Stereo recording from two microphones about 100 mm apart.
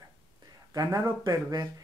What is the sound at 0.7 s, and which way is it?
Speech, 35° right (ahead or behind).